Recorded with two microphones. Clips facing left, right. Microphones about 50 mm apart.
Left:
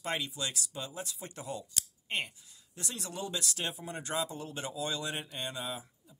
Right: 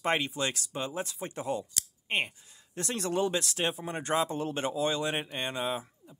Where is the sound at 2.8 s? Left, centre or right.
Right.